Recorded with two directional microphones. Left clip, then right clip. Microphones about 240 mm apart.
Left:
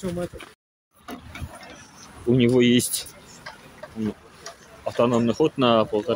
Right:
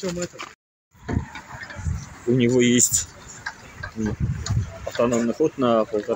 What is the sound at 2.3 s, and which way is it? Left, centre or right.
Speech, centre.